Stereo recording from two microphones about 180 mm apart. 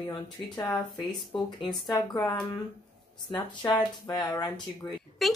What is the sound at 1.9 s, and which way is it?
Speech, 20° left (ahead or behind).